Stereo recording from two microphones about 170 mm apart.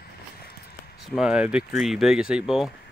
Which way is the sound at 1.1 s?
5° right (ahead or behind).